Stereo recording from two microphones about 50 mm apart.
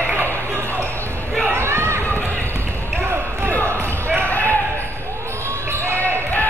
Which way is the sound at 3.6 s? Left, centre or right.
Right.